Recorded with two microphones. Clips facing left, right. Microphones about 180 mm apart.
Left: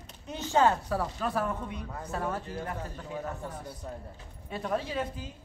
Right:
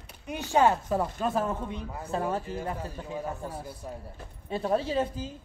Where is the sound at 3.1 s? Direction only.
10° right (ahead or behind).